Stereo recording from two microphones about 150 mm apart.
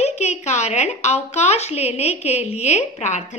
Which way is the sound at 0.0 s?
50° left (ahead or behind).